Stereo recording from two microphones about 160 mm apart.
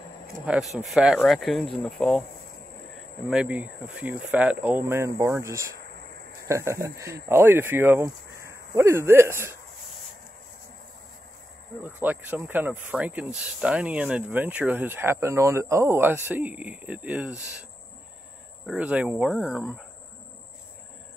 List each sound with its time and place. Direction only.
0.5 s speech: 5° right (ahead or behind)
3.3 s speech: 5° right (ahead or behind)
11.8 s speech: 10° right (ahead or behind)
18.7 s speech: 10° right (ahead or behind)